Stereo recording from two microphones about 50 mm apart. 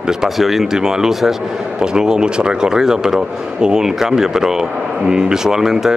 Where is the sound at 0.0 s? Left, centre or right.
Centre.